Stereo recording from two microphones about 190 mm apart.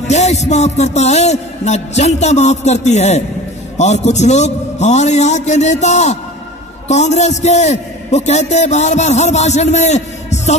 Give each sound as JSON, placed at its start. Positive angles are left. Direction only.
{"t": 0.1, "sound": "a man's voice", "side_deg": 35}